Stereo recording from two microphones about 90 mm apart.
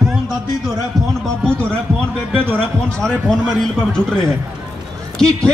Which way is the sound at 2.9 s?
10° left (ahead or behind).